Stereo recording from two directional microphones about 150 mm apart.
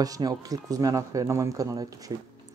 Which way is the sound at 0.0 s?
25° right (ahead or behind).